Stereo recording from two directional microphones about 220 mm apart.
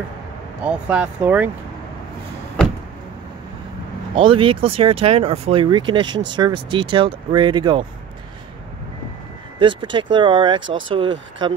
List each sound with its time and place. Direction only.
0.7 s speech: 5° right (ahead or behind)
4.2 s speech: 25° right (ahead or behind)
9.6 s speech: 20° right (ahead or behind)
10.6 s speech: 60° right (ahead or behind)
11.0 s speech: 20° right (ahead or behind)